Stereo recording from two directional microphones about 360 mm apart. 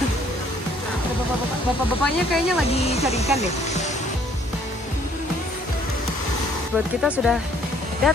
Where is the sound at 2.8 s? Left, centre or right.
Centre.